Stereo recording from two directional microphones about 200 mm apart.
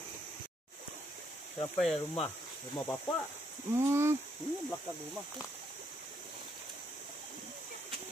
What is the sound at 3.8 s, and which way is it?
Speech, 15° right (ahead or behind).